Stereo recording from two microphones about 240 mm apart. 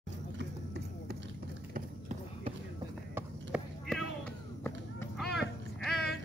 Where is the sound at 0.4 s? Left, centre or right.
Right.